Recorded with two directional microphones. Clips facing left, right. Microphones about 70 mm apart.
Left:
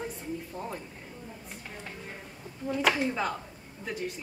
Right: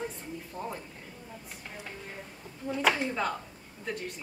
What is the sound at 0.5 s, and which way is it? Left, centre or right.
Speech, centre.